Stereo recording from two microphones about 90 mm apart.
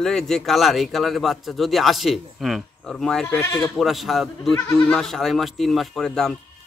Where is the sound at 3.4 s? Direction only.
35° left (ahead or behind).